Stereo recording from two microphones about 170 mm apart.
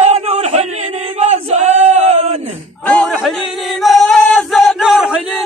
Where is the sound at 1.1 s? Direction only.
40° right (ahead or behind).